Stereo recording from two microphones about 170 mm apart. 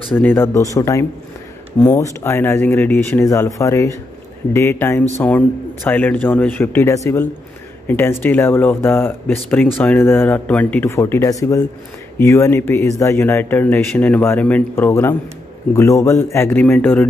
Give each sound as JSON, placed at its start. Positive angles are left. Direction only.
{"t": 0.1, "sound": "speech", "side_deg": 10}